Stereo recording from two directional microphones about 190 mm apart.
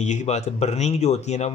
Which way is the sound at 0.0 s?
40° left (ahead or behind).